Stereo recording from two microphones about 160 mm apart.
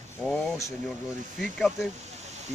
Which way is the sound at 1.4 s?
Centre (ahead or behind).